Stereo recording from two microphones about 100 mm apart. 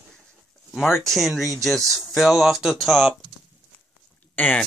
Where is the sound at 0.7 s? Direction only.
5° right (ahead or behind).